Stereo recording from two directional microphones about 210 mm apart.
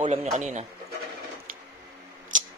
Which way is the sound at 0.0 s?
30° right (ahead or behind).